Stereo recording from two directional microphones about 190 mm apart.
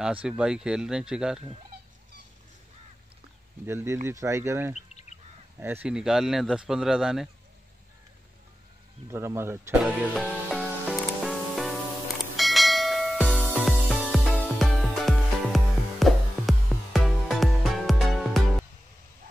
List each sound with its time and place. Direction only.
0.0 s speech: 5° right (ahead or behind)
3.6 s speech: 15° right (ahead or behind)
9.1 s speech: 15° right (ahead or behind)
10.1 s music: centre (ahead or behind)
12.4 s bell: centre (ahead or behind)
13.4 s music: 5° right (ahead or behind)